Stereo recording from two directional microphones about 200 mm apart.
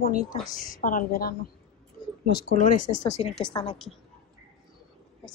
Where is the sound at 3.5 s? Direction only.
25° left (ahead or behind).